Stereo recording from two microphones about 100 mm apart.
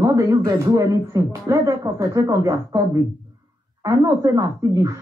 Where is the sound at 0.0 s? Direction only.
35° right (ahead or behind).